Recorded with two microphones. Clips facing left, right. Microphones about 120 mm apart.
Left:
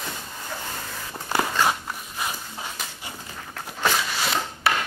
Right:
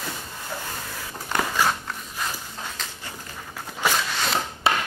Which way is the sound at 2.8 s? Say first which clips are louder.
Even; 10° left (ahead or behind).